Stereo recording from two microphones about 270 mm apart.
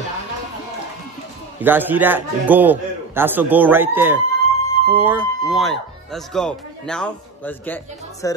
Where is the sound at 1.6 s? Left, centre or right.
Centre.